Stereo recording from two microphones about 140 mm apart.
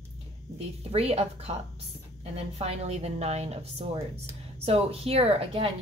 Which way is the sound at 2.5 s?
50° right (ahead or behind).